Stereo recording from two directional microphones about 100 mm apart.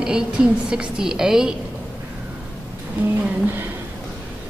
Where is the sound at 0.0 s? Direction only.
10° right (ahead or behind).